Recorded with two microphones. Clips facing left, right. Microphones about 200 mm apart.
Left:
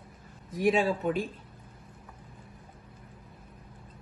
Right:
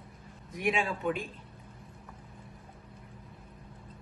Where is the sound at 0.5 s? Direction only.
35° left (ahead or behind).